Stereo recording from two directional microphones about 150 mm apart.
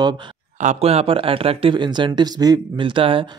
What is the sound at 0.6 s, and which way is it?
Speech, 45° right (ahead or behind).